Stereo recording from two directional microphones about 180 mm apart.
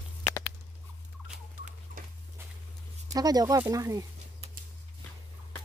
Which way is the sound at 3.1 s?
20° right (ahead or behind).